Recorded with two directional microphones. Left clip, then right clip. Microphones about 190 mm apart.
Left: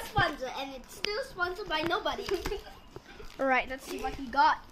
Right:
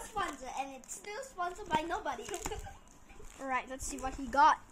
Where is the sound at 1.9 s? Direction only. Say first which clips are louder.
Left 6 dB; 10° left (ahead or behind).